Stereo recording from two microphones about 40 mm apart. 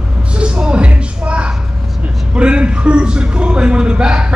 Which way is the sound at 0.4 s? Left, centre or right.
Right.